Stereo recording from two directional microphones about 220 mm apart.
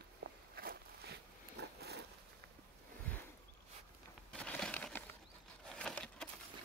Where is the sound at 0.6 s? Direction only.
45° right (ahead or behind).